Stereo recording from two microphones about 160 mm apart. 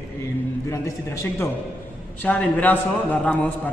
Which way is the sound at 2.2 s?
10° left (ahead or behind).